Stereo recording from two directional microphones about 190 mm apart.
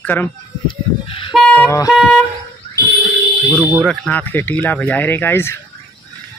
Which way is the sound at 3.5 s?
Centre (ahead or behind).